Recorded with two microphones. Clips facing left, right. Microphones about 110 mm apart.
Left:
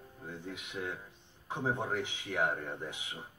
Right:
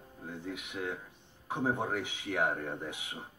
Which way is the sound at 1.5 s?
10° right (ahead or behind).